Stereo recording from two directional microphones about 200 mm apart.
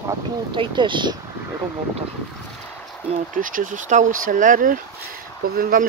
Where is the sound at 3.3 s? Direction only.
45° right (ahead or behind).